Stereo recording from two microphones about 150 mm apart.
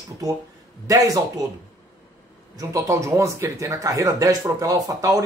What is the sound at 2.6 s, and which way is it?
Speech, 20° right (ahead or behind).